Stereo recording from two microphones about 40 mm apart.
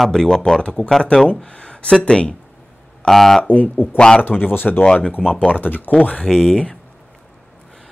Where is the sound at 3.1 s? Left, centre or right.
Centre.